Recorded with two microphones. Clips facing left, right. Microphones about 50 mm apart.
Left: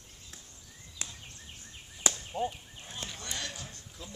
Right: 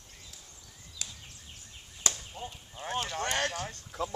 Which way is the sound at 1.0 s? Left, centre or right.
Left.